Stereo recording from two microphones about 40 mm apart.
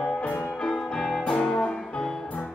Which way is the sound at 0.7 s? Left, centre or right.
Centre.